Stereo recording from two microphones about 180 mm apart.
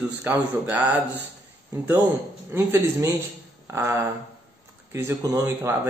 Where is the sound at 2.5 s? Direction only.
15° right (ahead or behind).